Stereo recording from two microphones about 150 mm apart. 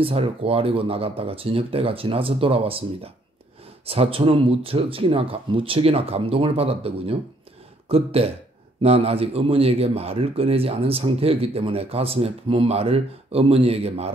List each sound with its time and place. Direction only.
0.0 s a man's voice: 40° right (ahead or behind)